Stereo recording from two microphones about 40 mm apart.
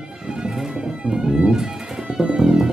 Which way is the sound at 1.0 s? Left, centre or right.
Centre.